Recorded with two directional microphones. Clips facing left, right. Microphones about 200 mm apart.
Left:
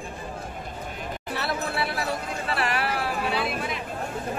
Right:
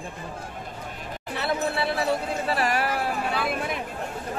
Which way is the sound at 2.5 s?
40° right (ahead or behind).